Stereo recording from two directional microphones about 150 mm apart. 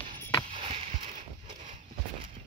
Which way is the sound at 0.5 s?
35° right (ahead or behind).